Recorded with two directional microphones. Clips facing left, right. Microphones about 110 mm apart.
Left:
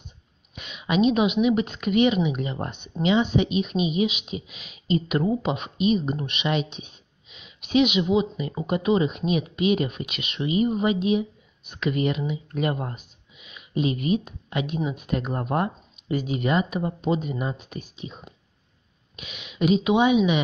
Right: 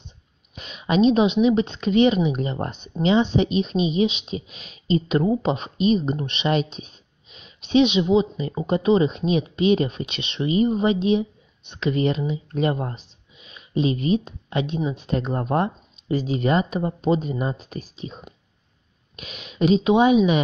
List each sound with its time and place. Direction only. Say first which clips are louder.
0.6 s a woman's voice: right 3 dB; 35° right (ahead or behind)